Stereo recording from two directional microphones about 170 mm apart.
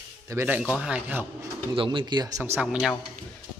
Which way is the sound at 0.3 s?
15° right (ahead or behind).